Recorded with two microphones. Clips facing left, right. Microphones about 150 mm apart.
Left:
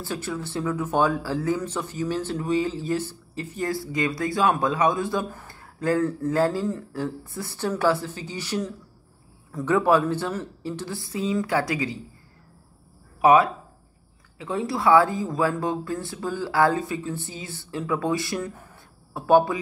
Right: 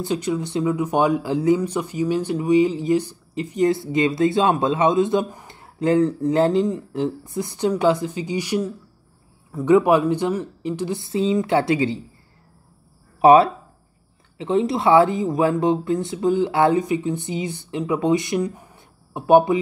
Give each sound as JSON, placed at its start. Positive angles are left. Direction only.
{"t": 0.0, "sound": "speech", "side_deg": -20}
{"t": 13.2, "sound": "speech", "side_deg": -30}